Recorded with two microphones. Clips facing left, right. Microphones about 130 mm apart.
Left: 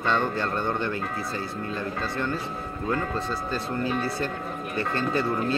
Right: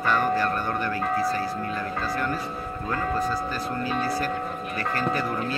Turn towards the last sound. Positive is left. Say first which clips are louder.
# even
turn(degrees=25)  # may be behind; listen again after turning